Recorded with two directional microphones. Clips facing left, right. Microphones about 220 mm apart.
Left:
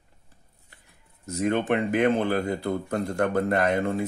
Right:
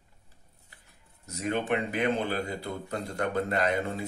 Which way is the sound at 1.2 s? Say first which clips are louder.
Left 6 dB; 50° left (ahead or behind).